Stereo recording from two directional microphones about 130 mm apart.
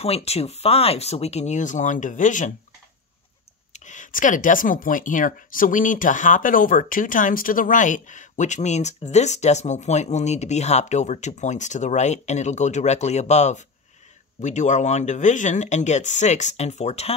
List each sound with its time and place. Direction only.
0.0 s speech: 50° left (ahead or behind); by 2.5 s 80° left
3.7 s speech: 70° left (ahead or behind)